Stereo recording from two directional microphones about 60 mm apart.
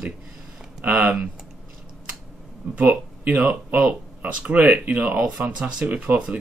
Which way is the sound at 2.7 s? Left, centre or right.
Right.